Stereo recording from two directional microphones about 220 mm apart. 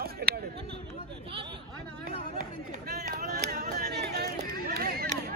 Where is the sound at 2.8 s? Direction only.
45° right (ahead or behind).